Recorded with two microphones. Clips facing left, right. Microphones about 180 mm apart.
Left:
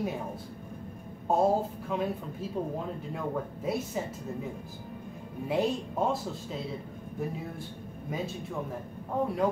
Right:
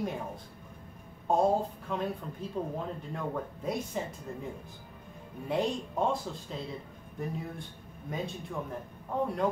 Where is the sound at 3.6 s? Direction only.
5° left (ahead or behind).